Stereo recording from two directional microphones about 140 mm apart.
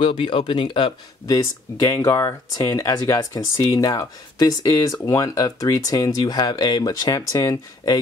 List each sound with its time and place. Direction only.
0.0 s speech: 40° left (ahead or behind)